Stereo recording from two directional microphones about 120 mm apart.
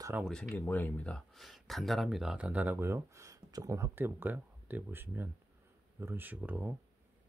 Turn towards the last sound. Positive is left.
turn(degrees=-15)  # may be behind; listen again after turning